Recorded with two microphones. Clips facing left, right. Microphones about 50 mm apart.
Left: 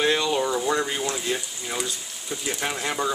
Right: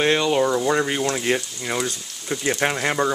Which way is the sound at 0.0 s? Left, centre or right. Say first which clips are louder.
Right 3 dB; right.